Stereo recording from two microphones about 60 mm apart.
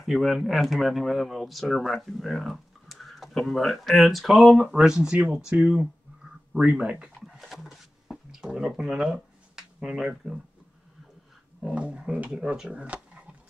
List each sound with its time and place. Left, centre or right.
0.0 s speech: centre
4.7 s speech: centre
7.2 s a sound: centre
11.6 s speech: centre